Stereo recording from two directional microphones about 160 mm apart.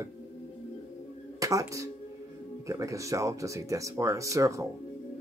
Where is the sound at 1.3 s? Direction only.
20° right (ahead or behind).